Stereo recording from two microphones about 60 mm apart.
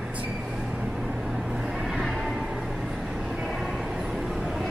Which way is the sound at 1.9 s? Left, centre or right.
Centre.